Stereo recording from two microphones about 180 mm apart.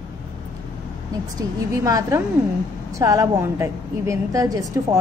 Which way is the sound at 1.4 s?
20° right (ahead or behind).